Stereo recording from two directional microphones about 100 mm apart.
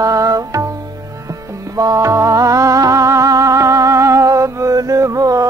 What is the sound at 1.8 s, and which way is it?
Music, 35° right (ahead or behind).